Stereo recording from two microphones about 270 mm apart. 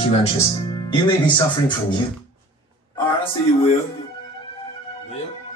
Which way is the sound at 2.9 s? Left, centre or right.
Left.